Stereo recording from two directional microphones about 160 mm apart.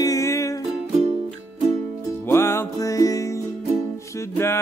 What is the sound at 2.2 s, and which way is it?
Music, 15° left (ahead or behind).